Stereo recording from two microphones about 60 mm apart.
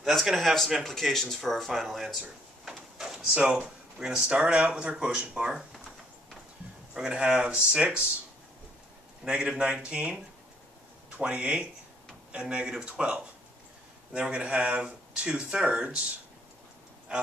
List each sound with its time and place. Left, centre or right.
0.0 s speech: centre
0.8 s speech: centre
3.3 s speech: right
6.9 s speech: centre
9.3 s speech: centre